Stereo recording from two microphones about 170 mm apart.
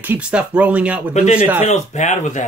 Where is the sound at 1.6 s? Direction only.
45° left (ahead or behind).